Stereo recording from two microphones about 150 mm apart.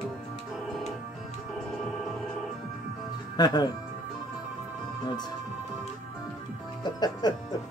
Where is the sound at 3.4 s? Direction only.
25° left (ahead or behind).